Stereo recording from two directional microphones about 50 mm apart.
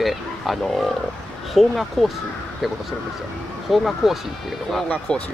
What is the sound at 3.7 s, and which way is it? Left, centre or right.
Speech, centre.